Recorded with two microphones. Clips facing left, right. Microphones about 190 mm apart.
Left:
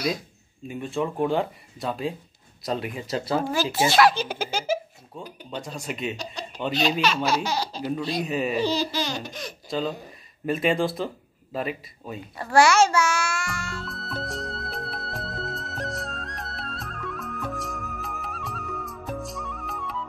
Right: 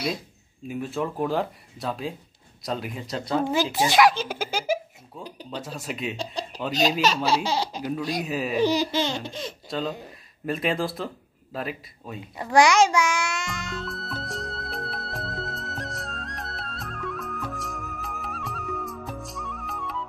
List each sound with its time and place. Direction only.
0.7 s speech: centre (ahead or behind)
3.7 s a child's voice: 15° right (ahead or behind)
4.1 s speech: 5° right (ahead or behind)
6.1 s speech: 30° right (ahead or behind)
8.0 s speech: 5° right (ahead or behind)
8.5 s speech: 15° right (ahead or behind)
9.7 s speech: centre (ahead or behind)
12.4 s a child's voice: 15° right (ahead or behind)
13.8 s music: centre (ahead or behind)